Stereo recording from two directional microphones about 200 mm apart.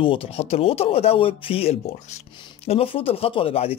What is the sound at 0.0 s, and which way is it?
Speech, 25° left (ahead or behind).